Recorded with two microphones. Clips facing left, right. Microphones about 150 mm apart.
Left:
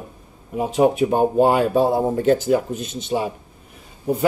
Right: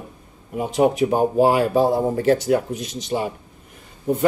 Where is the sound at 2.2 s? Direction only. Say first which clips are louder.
Even; 75° right (ahead or behind).